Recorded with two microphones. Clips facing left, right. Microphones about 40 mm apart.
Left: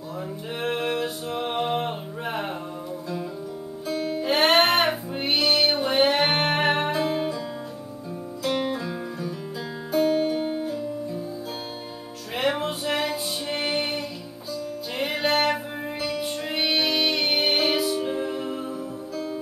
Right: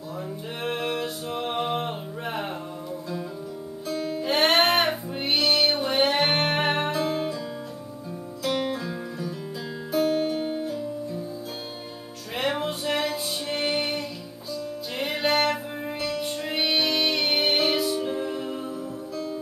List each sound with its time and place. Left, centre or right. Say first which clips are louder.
0.6 s music: left 2 dB; centre
3.8 s music: left 2 dB; centre
8.5 s music: left 1 dB; centre
12.4 s music: left 2 dB; centre